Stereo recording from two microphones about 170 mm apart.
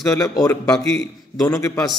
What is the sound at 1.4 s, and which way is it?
Speech, 15° left (ahead or behind).